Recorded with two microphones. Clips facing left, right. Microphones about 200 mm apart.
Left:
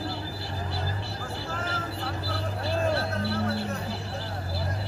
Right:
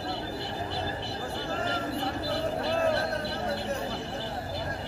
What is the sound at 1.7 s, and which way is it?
Vehicle, 20° right (ahead or behind).